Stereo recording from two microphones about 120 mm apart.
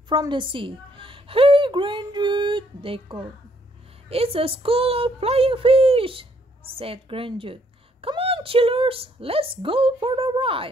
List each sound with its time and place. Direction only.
0.1 s a woman's voice: 40° right (ahead or behind)